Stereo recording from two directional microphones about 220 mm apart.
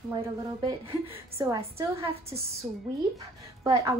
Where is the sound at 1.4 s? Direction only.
15° right (ahead or behind).